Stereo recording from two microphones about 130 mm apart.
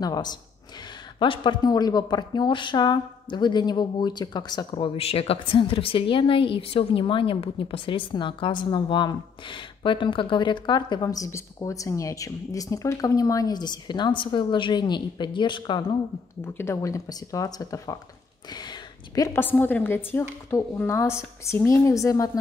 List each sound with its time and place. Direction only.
0.0 s speech: 30° left (ahead or behind)
4.7 s a woman's voice: 45° left (ahead or behind)
16.5 s a woman's voice: 20° left (ahead or behind)